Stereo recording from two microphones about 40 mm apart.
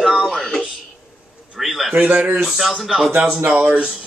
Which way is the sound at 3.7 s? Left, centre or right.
Right.